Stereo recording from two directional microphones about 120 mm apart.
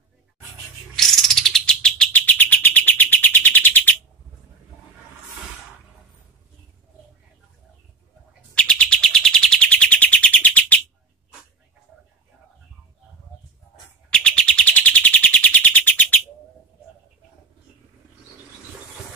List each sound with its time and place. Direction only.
0.9 s bird: 5° left (ahead or behind)
8.5 s bird: 10° left (ahead or behind)
14.1 s bird: 10° left (ahead or behind)